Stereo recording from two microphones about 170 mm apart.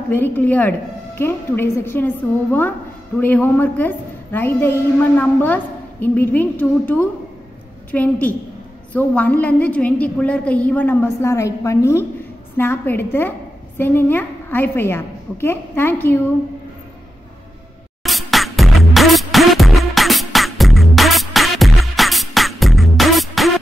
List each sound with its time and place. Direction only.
0.1 s a woman's voice: 10° left (ahead or behind)
18.0 s music: centre (ahead or behind)